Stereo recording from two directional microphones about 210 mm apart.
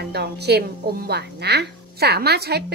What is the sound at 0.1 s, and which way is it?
A woman's voice, 50° right (ahead or behind).